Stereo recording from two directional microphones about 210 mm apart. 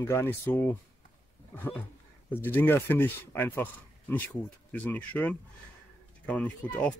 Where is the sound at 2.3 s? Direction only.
10° left (ahead or behind).